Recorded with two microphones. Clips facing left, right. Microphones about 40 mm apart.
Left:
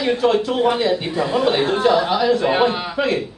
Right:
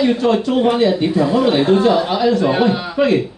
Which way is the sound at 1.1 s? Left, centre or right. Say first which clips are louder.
Right 4 dB; left.